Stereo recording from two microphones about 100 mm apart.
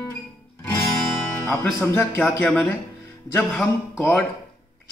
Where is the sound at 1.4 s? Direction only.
25° left (ahead or behind).